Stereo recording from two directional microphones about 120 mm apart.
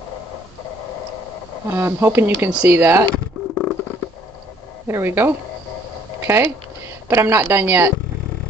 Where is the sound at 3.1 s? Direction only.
10° left (ahead or behind).